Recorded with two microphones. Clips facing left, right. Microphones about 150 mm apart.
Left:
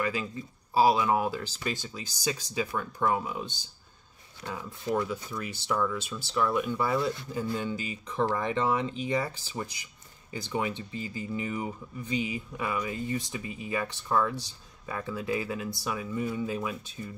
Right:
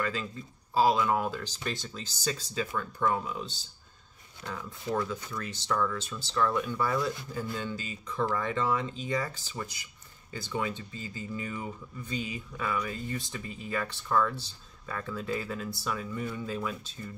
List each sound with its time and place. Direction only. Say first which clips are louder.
0.0 s speech: left 2 dB; 10° left (ahead or behind)